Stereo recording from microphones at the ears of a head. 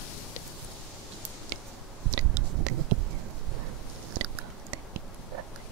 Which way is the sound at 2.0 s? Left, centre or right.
Right.